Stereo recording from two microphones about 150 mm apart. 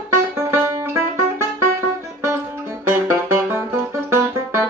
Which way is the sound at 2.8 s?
15° right (ahead or behind).